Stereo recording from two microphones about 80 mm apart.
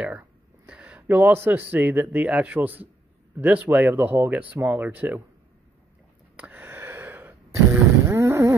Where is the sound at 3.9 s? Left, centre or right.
Right.